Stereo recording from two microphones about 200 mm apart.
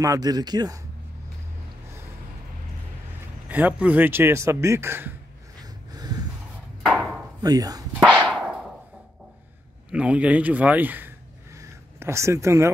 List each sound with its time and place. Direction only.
0.0 s speech: 20° right (ahead or behind)
3.4 s speech: 10° right (ahead or behind)
5.6 s snort: 20° right (ahead or behind)
6.8 s chopping: centre (ahead or behind)
7.4 s speech: 20° right (ahead or behind)
8.0 s whip: 5° right (ahead or behind)
9.8 s speech: 5° right (ahead or behind)